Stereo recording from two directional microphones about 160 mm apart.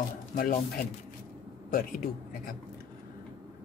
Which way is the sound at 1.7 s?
60° left (ahead or behind).